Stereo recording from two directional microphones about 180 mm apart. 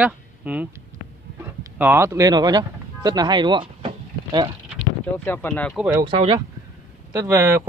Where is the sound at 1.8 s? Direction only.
15° right (ahead or behind).